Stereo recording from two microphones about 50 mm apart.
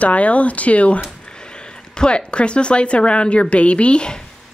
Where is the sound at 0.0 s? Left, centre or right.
Left.